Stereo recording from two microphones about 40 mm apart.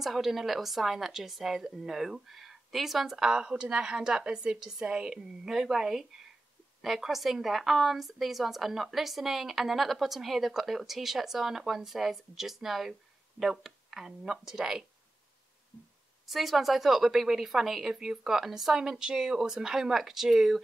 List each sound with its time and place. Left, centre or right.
0.0 s speech: centre
3.2 s a woman's voice: centre
5.5 s a woman's voice: centre
16.3 s a woman's voice: centre